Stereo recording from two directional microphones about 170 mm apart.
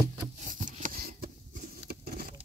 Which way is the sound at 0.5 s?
50° right (ahead or behind).